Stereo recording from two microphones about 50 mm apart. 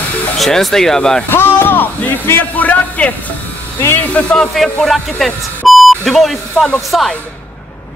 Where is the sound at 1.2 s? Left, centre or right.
Left.